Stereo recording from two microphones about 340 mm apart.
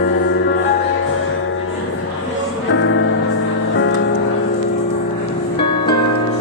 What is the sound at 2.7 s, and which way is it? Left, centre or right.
Music, left.